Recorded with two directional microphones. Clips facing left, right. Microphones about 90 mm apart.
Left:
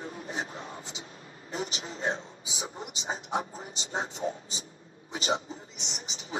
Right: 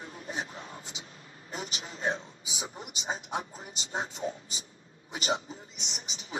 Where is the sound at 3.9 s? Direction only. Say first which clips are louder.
Left 2 dB; 35° left (ahead or behind).